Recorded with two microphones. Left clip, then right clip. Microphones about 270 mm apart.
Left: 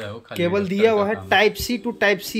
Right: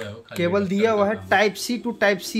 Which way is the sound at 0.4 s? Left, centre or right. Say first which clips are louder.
Left 2 dB; centre.